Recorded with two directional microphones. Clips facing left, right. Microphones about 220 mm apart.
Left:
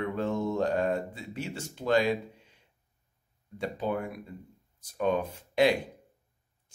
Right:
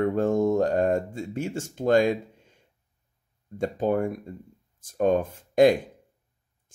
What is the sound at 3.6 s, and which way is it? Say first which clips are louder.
Speech: right 7 dB; 50° right (ahead or behind).